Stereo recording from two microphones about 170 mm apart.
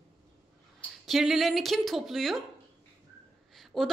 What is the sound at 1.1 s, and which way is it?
Speech, centre (ahead or behind).